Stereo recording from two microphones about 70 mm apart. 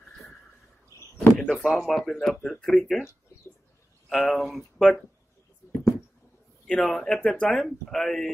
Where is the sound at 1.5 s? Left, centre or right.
Centre.